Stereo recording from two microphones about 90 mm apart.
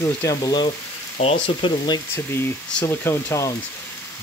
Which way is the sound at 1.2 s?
90° left.